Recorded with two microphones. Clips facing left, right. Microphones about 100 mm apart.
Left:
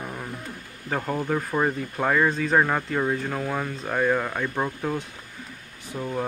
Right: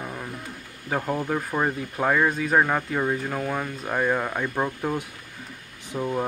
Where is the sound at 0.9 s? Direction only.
5° right (ahead or behind).